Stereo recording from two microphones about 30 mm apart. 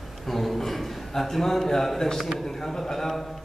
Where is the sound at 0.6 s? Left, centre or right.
Centre.